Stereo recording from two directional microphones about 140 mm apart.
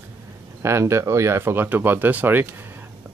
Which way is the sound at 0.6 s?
20° right (ahead or behind).